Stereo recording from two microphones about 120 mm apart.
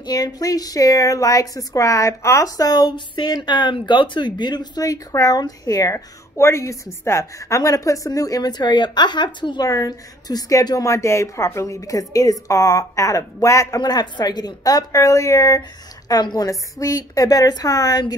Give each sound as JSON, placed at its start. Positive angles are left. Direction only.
{"t": 0.0, "sound": "a woman's voice", "side_deg": 35}